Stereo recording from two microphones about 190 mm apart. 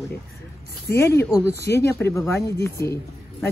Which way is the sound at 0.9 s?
15° left (ahead or behind).